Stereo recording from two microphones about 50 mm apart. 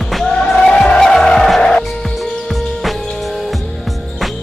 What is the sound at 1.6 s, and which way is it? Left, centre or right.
Music, centre.